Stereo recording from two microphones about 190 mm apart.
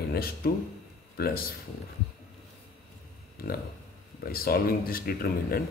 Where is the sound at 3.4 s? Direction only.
55° left (ahead or behind).